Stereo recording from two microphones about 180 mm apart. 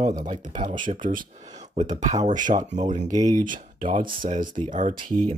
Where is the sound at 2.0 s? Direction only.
40° right (ahead or behind).